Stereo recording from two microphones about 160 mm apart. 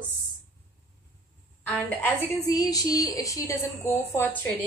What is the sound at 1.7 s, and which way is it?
Speech, 10° left (ahead or behind).